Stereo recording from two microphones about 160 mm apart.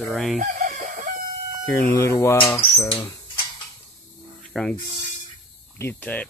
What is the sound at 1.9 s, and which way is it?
Speech, 15° left (ahead or behind).